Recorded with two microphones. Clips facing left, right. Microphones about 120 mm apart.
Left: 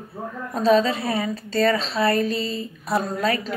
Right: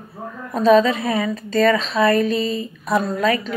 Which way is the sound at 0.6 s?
30° left (ahead or behind).